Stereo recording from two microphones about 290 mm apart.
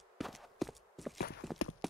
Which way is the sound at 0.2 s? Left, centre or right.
Centre.